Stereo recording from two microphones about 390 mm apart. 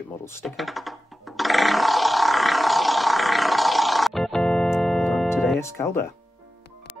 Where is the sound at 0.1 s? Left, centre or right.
Centre.